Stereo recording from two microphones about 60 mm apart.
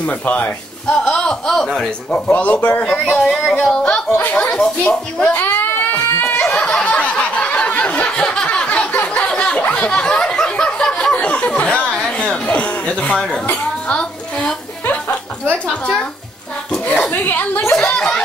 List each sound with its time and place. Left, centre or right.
0.0 s speech: left
0.8 s a man's voice: centre
2.1 s speech: left
2.8 s a man's voice: centre
4.2 s speech: left
4.6 s a man's voice: centre
5.3 s a sound: left
6.4 s snicker: centre
8.6 s a sound: left
13.8 s speech: left
14.9 s music: left
17.1 s speech: left
17.7 s a man's voice: centre